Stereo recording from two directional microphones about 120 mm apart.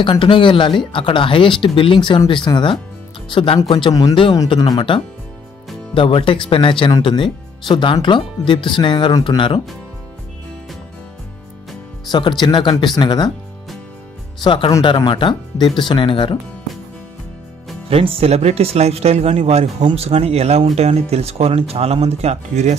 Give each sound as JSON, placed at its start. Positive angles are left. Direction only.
{"t": 0.0, "sound": "speech", "side_deg": 45}
{"t": 4.7, "sound": "speech", "side_deg": 45}
{"t": 12.1, "sound": "speech", "side_deg": 40}
{"t": 14.4, "sound": "speech", "side_deg": 45}
{"t": 17.8, "sound": "speech", "side_deg": -55}